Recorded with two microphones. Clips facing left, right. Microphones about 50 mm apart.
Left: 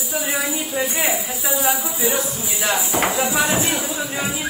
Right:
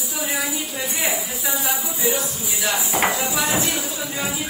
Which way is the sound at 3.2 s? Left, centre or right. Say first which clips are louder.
Left 3 dB; left.